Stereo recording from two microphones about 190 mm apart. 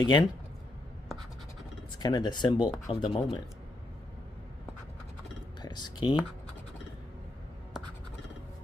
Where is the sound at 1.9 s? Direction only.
20° left (ahead or behind).